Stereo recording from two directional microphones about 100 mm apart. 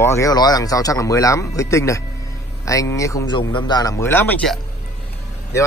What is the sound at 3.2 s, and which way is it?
Speech, 50° left (ahead or behind).